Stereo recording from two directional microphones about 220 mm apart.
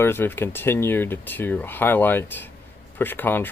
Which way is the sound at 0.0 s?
10° left (ahead or behind).